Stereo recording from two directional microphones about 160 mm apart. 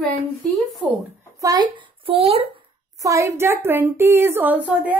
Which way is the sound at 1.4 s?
25° right (ahead or behind).